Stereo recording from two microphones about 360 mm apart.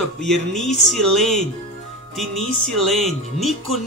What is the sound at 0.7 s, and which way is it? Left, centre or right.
Music, centre.